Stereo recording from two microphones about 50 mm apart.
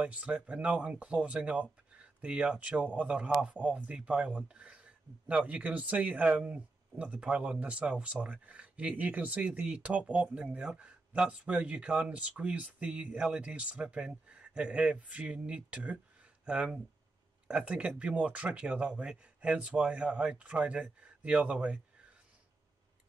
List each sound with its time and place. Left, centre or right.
0.0 s speech: right